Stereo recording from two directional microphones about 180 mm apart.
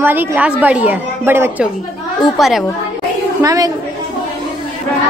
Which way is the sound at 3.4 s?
20° right (ahead or behind).